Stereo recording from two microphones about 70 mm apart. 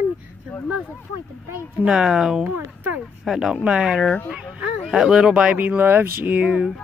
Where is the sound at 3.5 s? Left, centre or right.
Centre.